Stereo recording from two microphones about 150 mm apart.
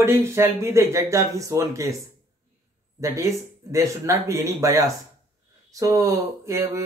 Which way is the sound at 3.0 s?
20° right (ahead or behind).